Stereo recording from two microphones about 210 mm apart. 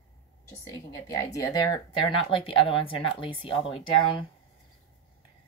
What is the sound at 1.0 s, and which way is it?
Speech, 15° left (ahead or behind).